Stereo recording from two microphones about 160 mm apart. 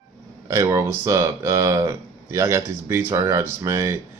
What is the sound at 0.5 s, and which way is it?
Speech, 20° right (ahead or behind).